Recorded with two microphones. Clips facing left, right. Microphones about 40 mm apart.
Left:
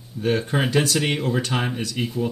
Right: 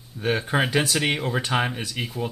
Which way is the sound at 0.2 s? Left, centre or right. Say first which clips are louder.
Left 1 dB; centre.